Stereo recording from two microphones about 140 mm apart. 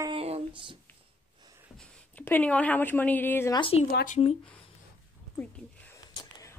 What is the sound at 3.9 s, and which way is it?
Speech, 90° left.